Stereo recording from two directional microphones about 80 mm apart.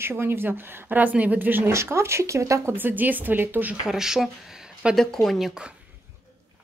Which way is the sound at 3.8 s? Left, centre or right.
Centre.